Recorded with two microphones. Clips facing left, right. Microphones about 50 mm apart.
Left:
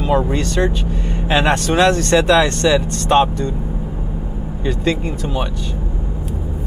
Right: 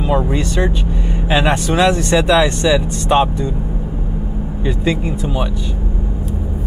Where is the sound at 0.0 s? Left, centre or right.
Centre.